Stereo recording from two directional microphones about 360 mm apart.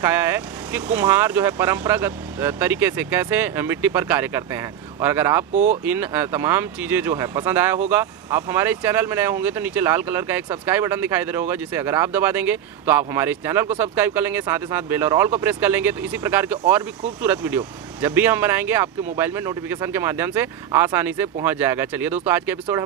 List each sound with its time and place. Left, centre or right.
0.0 s speech: centre
5.5 s speech: centre
5.9 s speech: centre